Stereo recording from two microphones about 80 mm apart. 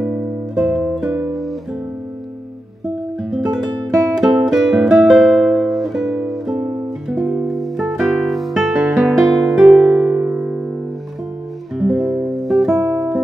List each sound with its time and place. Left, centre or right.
0.6 s music: centre
3.2 s music: centre
11.7 s music: centre
12.9 s music: centre